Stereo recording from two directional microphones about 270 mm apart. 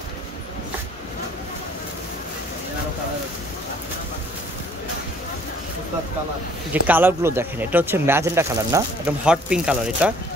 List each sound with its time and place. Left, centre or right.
6.7 s speech: centre